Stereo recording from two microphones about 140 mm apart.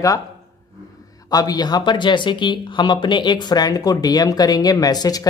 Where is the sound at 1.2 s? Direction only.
25° left (ahead or behind).